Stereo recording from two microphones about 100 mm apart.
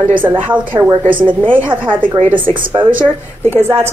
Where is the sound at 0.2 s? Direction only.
20° right (ahead or behind).